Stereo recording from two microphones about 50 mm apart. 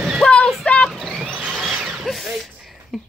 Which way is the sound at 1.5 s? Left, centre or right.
Centre.